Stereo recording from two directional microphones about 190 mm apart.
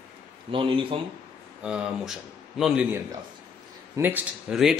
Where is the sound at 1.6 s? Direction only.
5° right (ahead or behind).